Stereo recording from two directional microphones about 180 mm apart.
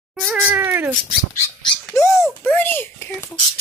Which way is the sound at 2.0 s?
15° left (ahead or behind).